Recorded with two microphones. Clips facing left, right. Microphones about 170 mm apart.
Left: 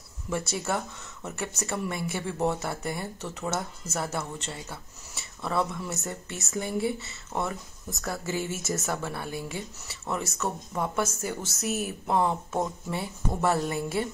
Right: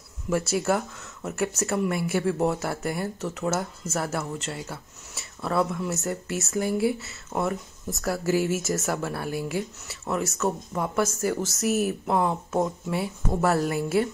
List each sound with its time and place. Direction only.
0.3 s speech: 5° right (ahead or behind)